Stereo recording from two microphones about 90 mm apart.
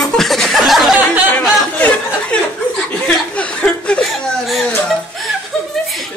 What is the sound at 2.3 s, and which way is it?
Chuckle, 10° left (ahead or behind).